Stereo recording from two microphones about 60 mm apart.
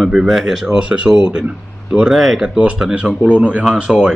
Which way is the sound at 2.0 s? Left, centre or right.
Centre.